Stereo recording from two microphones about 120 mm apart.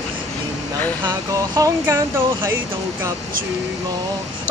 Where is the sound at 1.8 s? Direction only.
20° right (ahead or behind).